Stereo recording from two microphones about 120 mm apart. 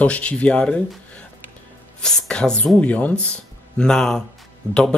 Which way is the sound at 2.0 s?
5° left (ahead or behind).